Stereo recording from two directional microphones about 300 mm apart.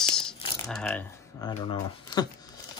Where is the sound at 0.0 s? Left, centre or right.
Centre.